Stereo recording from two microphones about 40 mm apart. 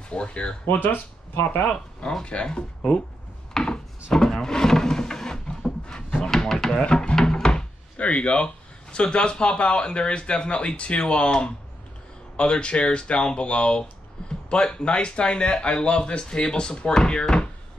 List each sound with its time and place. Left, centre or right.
0.1 s speech: left
0.7 s speech: left
1.7 s speech: left
3.5 s wood: centre
4.1 s drawer open or close: centre
6.5 s a sound: centre
6.8 s speech: left
7.2 s wood: centre
8.0 s speech: left